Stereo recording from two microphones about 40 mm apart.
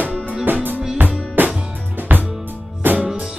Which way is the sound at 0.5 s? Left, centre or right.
Right.